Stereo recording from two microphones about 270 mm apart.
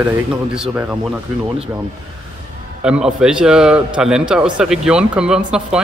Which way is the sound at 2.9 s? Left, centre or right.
Centre.